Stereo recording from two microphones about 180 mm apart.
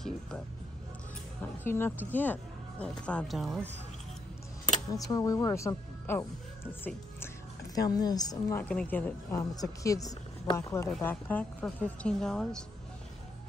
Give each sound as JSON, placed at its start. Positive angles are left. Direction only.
{"t": 1.6, "sound": "speech", "side_deg": 15}
{"t": 4.9, "sound": "a woman's voice", "side_deg": 20}
{"t": 8.6, "sound": "speech", "side_deg": 10}